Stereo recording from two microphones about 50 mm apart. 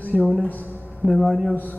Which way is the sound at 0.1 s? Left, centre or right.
Centre.